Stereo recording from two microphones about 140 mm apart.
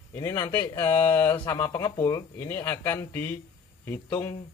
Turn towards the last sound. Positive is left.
turn(degrees=20)  # may be behind; listen again after turning